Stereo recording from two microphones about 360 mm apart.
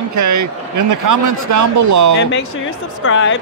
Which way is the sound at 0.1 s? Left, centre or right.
Right.